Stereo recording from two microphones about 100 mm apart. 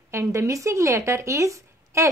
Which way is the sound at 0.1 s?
30° right (ahead or behind).